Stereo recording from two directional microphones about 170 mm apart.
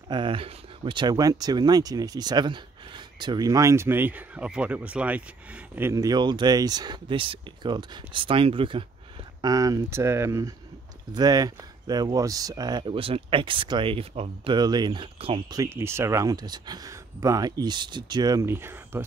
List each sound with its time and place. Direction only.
0.1 s speech: 30° right (ahead or behind)
15.5 s speech: 15° right (ahead or behind)